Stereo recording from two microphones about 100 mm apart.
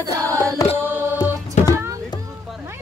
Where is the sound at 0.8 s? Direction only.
20° right (ahead or behind).